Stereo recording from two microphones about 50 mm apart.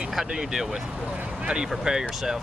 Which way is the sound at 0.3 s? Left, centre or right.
Centre.